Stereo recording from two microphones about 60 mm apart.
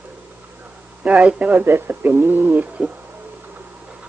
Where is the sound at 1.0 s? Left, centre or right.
Right.